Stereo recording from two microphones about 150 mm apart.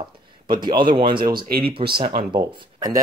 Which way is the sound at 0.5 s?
30° right (ahead or behind).